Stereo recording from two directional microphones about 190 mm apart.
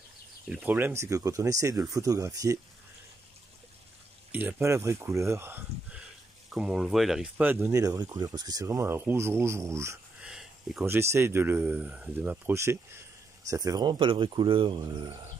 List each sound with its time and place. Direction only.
0.5 s speech: 5° right (ahead or behind)
4.3 s speech: 10° right (ahead or behind)
10.3 s a sound: centre (ahead or behind)
10.9 s speech: 15° right (ahead or behind)